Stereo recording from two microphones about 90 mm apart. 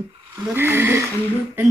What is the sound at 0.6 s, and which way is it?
Speech, 25° right (ahead or behind).